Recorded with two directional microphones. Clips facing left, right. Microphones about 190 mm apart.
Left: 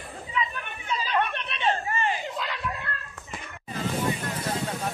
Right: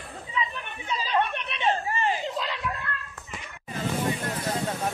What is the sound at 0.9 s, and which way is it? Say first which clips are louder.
Chatter: right 1 dB; 25° right (ahead or behind).